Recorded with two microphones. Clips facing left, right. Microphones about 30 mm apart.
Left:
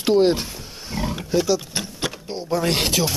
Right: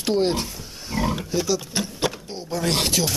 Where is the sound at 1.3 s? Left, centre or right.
Centre.